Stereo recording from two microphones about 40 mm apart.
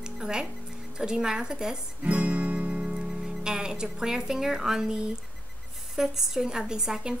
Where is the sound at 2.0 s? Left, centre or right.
Right.